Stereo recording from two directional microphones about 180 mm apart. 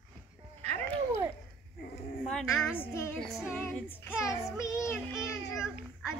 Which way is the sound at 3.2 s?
Centre (ahead or behind).